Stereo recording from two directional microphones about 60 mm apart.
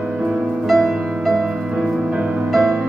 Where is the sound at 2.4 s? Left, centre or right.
Centre.